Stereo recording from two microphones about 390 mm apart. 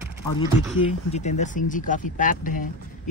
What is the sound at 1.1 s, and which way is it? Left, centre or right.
Speech, centre.